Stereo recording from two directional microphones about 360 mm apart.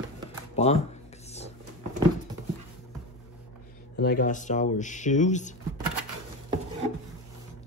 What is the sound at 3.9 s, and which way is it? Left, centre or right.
Speech, left.